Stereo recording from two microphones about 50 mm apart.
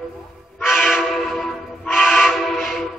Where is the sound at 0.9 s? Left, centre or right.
Centre.